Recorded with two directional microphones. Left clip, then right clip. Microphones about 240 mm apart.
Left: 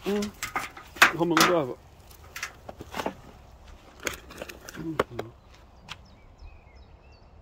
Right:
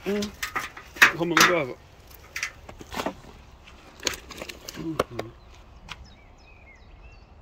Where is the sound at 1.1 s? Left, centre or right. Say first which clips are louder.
Right 2 dB; left.